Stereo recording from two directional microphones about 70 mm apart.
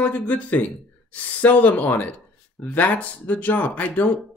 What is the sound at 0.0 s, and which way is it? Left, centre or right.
Speech, left.